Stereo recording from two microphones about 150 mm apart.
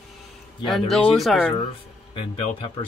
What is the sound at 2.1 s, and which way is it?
Speech, 35° left (ahead or behind).